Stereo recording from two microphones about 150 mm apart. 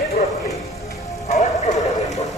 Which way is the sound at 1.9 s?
25° left (ahead or behind).